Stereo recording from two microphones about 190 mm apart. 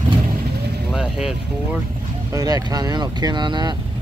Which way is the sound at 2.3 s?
20° right (ahead or behind).